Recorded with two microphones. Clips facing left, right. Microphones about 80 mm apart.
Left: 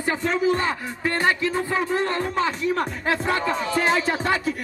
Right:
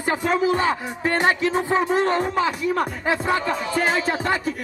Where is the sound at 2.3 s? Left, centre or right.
Centre.